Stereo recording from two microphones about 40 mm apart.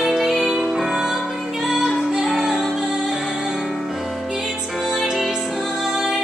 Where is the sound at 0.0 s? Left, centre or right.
Centre.